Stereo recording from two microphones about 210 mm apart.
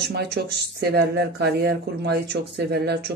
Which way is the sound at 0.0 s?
50° right (ahead or behind).